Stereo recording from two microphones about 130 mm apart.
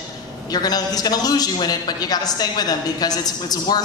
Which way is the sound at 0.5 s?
30° left (ahead or behind).